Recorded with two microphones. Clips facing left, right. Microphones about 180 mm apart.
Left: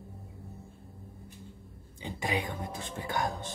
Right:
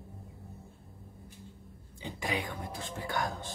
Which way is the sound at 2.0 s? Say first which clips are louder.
Left 2 dB; 20° left (ahead or behind).